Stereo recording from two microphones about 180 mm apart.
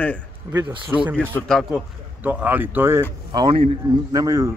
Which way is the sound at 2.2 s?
10° right (ahead or behind).